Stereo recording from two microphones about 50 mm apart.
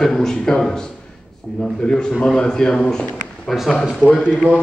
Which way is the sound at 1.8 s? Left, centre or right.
Centre.